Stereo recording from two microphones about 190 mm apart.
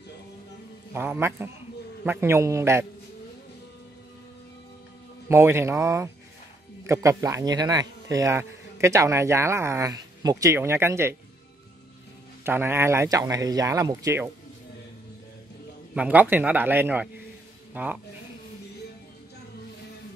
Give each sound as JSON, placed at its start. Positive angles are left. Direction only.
{"t": 0.9, "sound": "a man's voice", "side_deg": -10}
{"t": 5.3, "sound": "a man's voice", "side_deg": -15}
{"t": 12.4, "sound": "a man's voice", "side_deg": -10}
{"t": 15.9, "sound": "a man's voice", "side_deg": -5}